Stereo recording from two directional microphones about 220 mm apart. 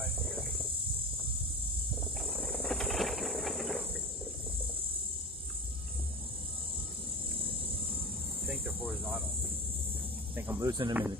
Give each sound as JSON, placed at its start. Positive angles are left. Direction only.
{"t": 0.0, "sound": "insect", "side_deg": 0}
{"t": 2.2, "sound": "a sound", "side_deg": 5}
{"t": 8.5, "sound": "cricket", "side_deg": -5}
{"t": 10.3, "sound": "speech", "side_deg": -10}